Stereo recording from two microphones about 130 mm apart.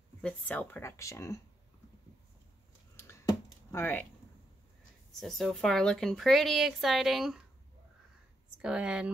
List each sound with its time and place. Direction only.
0.2 s speech: 10° left (ahead or behind)
3.0 s a sound: 20° left (ahead or behind)
5.2 s a woman's voice: centre (ahead or behind)
8.5 s speech: 5° right (ahead or behind)